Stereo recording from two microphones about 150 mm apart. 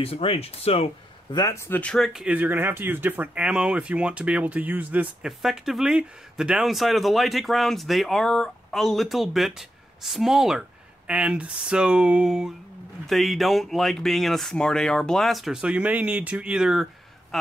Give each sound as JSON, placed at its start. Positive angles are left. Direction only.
{"t": 0.0, "sound": "speech", "side_deg": 40}
{"t": 1.3, "sound": "speech", "side_deg": 20}
{"t": 1.8, "sound": "speech", "side_deg": 5}